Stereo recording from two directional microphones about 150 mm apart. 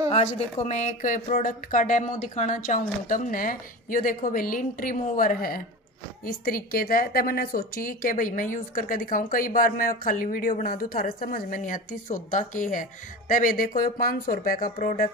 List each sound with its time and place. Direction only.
0.1 s a woman's voice: 50° left (ahead or behind); by 15.0 s 65° left (ahead or behind)